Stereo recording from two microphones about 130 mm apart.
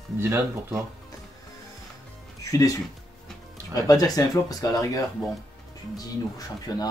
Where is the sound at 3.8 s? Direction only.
30° left (ahead or behind).